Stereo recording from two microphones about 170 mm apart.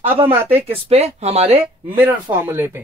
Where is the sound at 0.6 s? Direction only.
35° right (ahead or behind).